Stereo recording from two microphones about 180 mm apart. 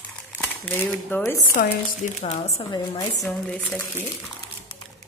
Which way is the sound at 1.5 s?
40° left (ahead or behind).